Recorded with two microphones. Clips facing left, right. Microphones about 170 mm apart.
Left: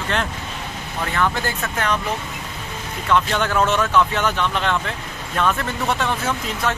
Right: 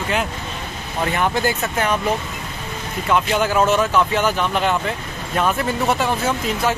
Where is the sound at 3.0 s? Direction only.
10° right (ahead or behind).